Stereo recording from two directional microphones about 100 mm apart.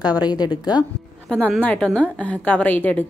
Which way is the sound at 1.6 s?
15° left (ahead or behind).